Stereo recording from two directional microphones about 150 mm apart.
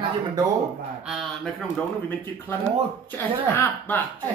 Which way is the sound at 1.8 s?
10° left (ahead or behind).